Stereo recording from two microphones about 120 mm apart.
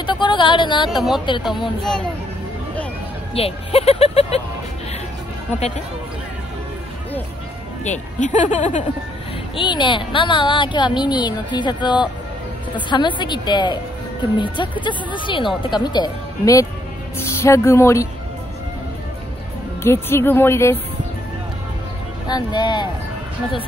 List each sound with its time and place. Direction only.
0.0 s speech: 40° left (ahead or behind)
1.8 s speech: 5° left (ahead or behind)
3.3 s speech: 55° left (ahead or behind)
7.8 s speech: 80° left
9.6 s speech: 40° left (ahead or behind); by 18.0 s 25° left (ahead or behind)
19.8 s speech: 20° left (ahead or behind)
22.3 s speech: 35° left (ahead or behind)